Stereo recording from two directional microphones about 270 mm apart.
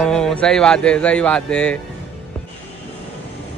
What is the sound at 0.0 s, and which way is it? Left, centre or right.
A man's voice, centre.